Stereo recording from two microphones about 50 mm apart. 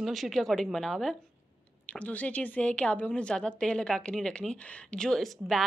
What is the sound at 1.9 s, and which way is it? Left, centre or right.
A woman's voice, left.